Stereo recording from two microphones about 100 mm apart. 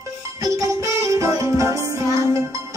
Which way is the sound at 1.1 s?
35° right (ahead or behind).